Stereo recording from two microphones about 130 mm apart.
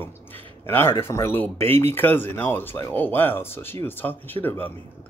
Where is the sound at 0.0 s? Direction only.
15° left (ahead or behind).